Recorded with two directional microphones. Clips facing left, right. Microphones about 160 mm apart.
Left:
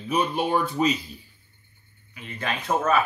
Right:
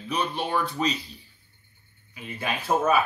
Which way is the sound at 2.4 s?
10° right (ahead or behind).